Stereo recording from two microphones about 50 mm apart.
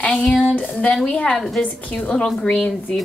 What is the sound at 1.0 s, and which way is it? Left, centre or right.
Speech, centre.